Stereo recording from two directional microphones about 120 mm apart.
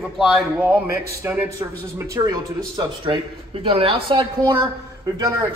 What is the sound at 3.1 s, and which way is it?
Speech, 45° right (ahead or behind).